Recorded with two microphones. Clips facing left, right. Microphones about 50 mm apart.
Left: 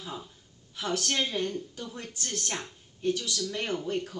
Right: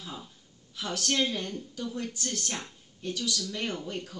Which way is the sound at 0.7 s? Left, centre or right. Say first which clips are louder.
Even; left.